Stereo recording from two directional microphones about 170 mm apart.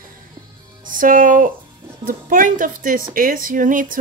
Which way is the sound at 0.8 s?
50° right (ahead or behind).